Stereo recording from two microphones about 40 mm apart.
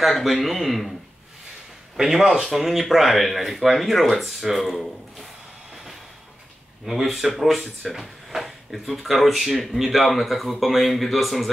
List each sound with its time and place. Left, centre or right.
0.2 s speech: centre
2.0 s speech: centre
6.9 s speech: centre